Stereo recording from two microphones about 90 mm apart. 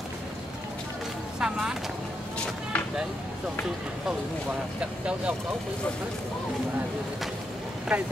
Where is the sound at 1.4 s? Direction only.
5° right (ahead or behind).